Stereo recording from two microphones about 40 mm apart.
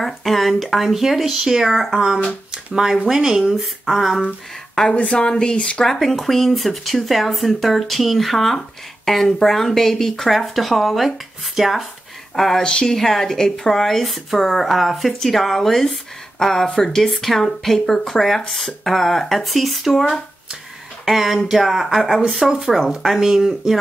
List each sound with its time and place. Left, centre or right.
0.0 s speech: centre
5.0 s speech: left
5.9 s speech: centre
12.4 s speech: centre
22.4 s speech: centre